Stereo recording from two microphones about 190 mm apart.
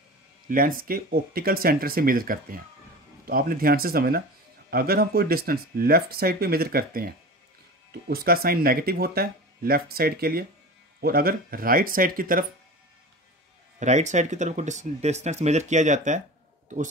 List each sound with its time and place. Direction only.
0.5 s speech: 45° right (ahead or behind)
13.7 s a man's voice: 40° right (ahead or behind)